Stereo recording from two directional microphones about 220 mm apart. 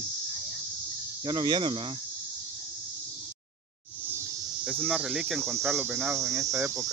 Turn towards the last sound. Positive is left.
turn(degrees=-15)  # may be behind; listen again after turning